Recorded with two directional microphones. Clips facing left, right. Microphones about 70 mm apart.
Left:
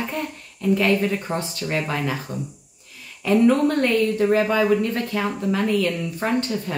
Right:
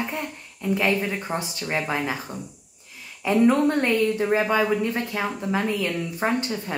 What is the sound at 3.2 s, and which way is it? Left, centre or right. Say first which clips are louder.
Speech: left 2 dB; right.